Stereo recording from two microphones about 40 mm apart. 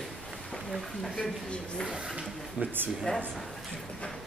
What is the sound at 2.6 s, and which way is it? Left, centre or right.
Speech, right.